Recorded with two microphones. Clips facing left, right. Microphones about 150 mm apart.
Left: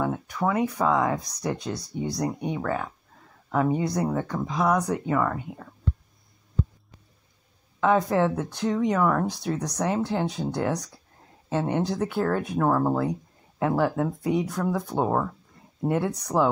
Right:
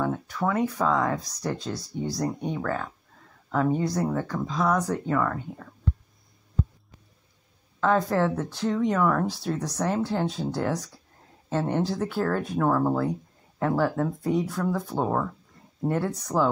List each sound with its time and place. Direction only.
0.0 s speech: 10° left (ahead or behind)
7.8 s speech: 10° left (ahead or behind)